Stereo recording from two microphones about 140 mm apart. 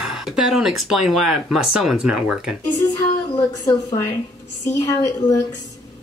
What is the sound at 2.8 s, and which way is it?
A woman's voice, 25° left (ahead or behind).